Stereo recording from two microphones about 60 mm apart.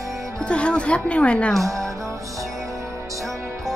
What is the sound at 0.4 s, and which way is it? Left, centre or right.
A woman's voice, centre.